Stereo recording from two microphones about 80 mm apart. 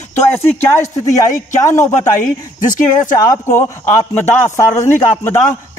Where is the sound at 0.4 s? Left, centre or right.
Left.